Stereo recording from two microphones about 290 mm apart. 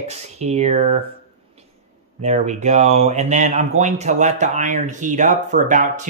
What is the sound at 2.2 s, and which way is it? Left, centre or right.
Speech, right.